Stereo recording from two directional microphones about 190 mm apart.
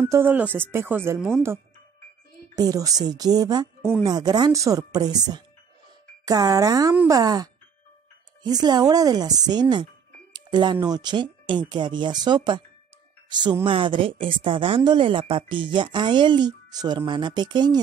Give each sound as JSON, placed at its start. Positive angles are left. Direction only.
{"t": 0.0, "sound": "speech", "side_deg": -10}
{"t": 2.5, "sound": "a woman's voice", "side_deg": -20}
{"t": 8.5, "sound": "a woman's voice", "side_deg": -20}